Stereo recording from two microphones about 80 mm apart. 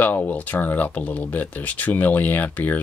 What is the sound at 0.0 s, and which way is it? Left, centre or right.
Speech, left.